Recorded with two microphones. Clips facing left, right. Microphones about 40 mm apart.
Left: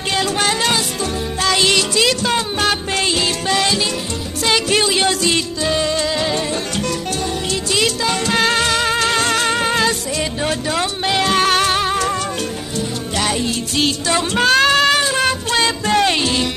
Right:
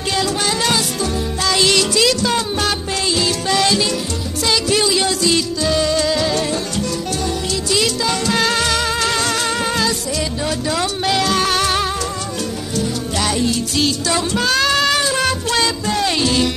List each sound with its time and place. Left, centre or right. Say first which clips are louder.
0.1 s music: left 1 dB; left; by 3.8 s centre
4.5 s music: left 1 dB; left
7.7 s music: even; centre
11.2 s music: left 2 dB; left
11.6 s music: left 1 dB; centre
13.2 s music: right 1 dB; centre
13.7 s music: left 3 dB; left
14.7 s music: left 2 dB; centre